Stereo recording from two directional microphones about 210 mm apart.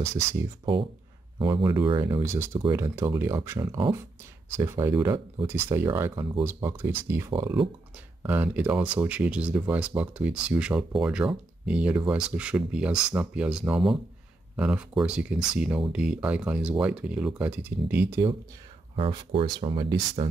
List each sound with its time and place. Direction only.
0.0 s speech: 15° right (ahead or behind)
7.3 s speech: 25° right (ahead or behind)
8.2 s speech: 10° right (ahead or behind)
18.9 s speech: 25° right (ahead or behind)